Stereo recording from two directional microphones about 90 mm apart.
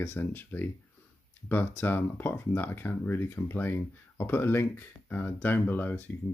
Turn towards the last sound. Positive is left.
turn(degrees=20)  # may be behind; listen again after turning